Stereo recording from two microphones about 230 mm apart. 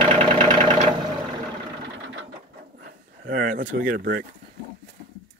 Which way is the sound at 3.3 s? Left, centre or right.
Right.